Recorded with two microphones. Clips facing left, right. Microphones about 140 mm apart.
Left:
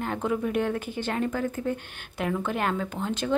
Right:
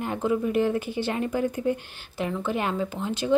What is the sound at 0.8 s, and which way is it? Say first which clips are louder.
Speech: right 3 dB; 45° left (ahead or behind).